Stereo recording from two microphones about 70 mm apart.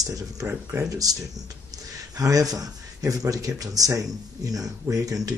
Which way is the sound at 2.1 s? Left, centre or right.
Right.